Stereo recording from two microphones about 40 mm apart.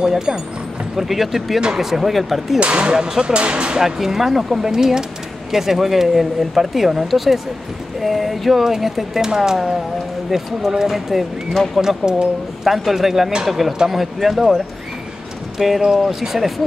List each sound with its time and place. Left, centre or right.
0.0 s speech: centre
0.9 s speech: centre
2.6 s speech: right
3.8 s speech: centre
11.5 s speech: centre
11.8 s speech: centre
15.6 s speech: centre